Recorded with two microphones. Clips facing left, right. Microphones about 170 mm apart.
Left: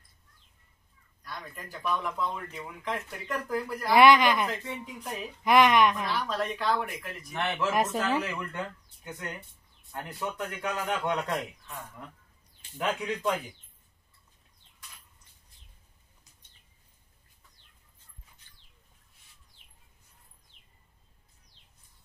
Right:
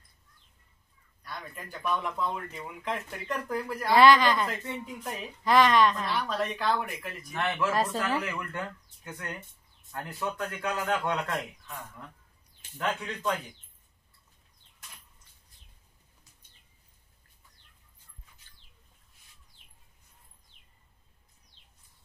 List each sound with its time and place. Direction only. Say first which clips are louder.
1.2 s speech: even; centre (ahead or behind)
4.0 s a man's voice: left 1 dB; 20° left (ahead or behind)
4.5 s speech: even; centre (ahead or behind)
5.4 s a man's voice: left 1 dB; 15° left (ahead or behind)
6.0 s speech: even; centre (ahead or behind)
7.3 s speech: even; 20° left (ahead or behind)
9.9 s a man's voice: right 1 dB; 20° left (ahead or behind)
12.7 s a man's voice: left 2 dB; 15° left (ahead or behind)